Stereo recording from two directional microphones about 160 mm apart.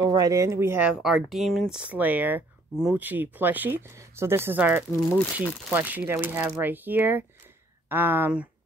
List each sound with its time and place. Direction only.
0.0 s speech: 25° right (ahead or behind)
1.0 s speech: centre (ahead or behind)